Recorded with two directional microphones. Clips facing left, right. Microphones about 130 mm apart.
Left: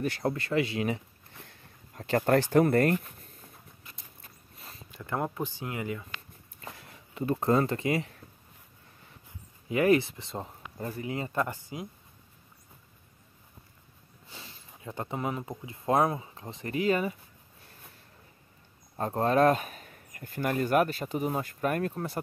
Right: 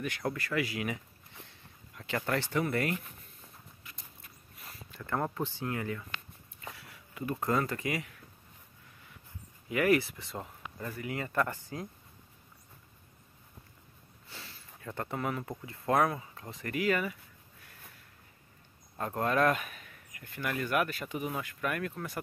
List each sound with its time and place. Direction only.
0.0 s speech: 30° left (ahead or behind)
1.4 s a sound: 45° left (ahead or behind)
4.6 s speech: 25° left (ahead or behind)
6.6 s a sound: 35° left (ahead or behind)
9.7 s speech: 25° left (ahead or behind)
14.2 s sniff: 20° left (ahead or behind)
15.6 s speech: 20° left (ahead or behind)
18.9 s speech: 30° left (ahead or behind)